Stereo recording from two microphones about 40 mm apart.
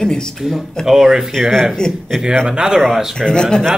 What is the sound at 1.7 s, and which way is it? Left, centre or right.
Speech, centre.